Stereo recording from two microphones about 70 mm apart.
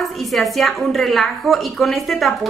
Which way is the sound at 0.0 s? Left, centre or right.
Centre.